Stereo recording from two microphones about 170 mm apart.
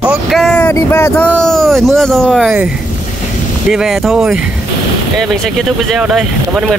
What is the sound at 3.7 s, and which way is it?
Speech, centre (ahead or behind).